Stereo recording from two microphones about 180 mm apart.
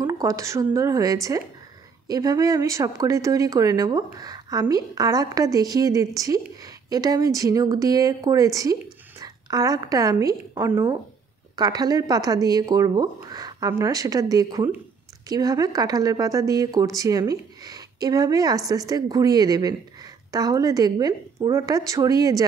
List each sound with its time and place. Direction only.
0.0 s a woman's voice: 20° right (ahead or behind)